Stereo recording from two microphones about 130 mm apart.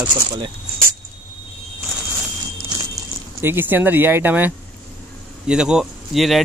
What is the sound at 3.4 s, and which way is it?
Speech, 15° right (ahead or behind).